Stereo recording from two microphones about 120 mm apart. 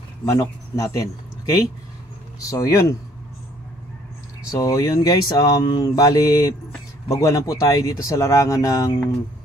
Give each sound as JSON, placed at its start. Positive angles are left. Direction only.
{"t": 0.3, "sound": "speech", "side_deg": 30}
{"t": 2.4, "sound": "speech", "side_deg": 30}
{"t": 4.5, "sound": "speech", "side_deg": 30}